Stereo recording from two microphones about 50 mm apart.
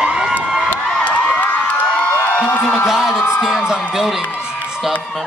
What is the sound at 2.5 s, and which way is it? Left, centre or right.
Speech, left.